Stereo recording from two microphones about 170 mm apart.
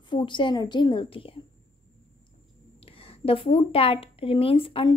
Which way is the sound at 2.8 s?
35° left (ahead or behind).